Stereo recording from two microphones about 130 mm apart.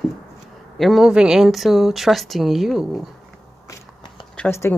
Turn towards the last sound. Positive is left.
turn(degrees=20)  # may be behind; listen again after turning